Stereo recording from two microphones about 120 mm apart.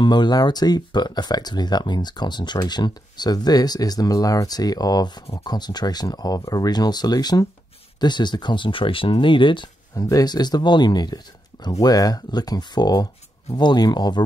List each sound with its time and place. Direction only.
0.0 s speech: 40° left (ahead or behind)
9.9 s speech: 30° left (ahead or behind)